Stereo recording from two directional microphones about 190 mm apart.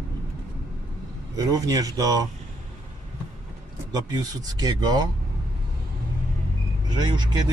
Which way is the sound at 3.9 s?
20° right (ahead or behind).